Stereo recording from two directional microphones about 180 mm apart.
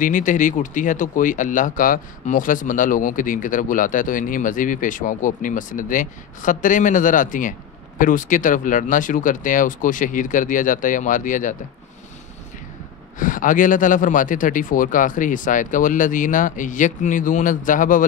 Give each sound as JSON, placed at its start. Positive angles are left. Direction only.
{"t": 0.0, "sound": "speech", "side_deg": 45}
{"t": 13.2, "sound": "speech", "side_deg": 50}